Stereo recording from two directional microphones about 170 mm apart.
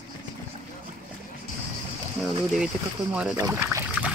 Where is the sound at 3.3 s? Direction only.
20° right (ahead or behind).